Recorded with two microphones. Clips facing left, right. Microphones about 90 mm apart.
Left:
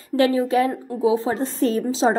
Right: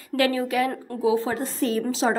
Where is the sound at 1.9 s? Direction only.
25° left (ahead or behind).